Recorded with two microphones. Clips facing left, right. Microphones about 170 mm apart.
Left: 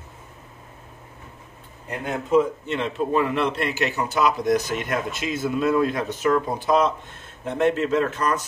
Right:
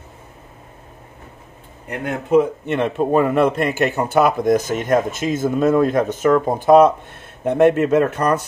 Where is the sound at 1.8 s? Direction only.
60° right (ahead or behind).